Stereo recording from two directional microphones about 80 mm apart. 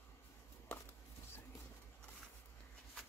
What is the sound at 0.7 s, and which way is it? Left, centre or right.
Chopping, centre.